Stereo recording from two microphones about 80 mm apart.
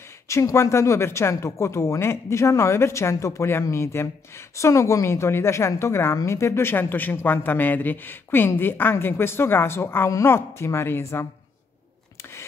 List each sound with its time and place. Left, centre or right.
0.3 s speech: left